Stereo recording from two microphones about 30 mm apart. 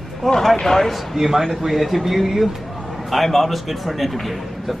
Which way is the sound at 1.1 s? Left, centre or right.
Centre.